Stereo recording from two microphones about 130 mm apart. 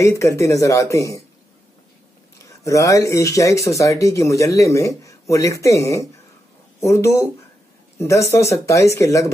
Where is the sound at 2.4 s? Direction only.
25° left (ahead or behind).